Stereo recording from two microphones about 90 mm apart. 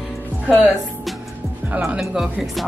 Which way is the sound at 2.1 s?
5° right (ahead or behind).